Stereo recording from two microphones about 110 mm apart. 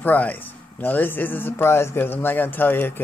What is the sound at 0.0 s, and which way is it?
Speech, 15° left (ahead or behind).